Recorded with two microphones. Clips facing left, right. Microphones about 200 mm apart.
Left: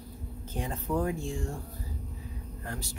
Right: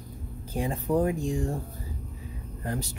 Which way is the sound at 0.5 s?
15° right (ahead or behind).